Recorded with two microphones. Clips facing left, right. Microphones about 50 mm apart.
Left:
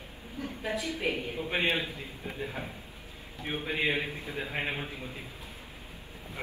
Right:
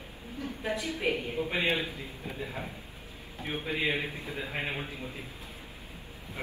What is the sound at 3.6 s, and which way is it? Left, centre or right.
Speech, left.